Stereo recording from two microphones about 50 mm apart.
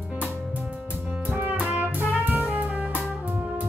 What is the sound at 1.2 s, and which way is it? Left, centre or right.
Music, right.